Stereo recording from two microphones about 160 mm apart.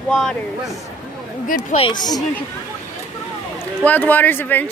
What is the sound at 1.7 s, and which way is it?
Speech, 30° left (ahead or behind).